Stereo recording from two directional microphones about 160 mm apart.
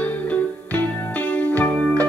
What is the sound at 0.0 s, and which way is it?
Music, 10° left (ahead or behind).